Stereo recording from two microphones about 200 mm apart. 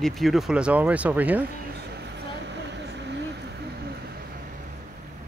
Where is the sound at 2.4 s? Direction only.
60° right (ahead or behind).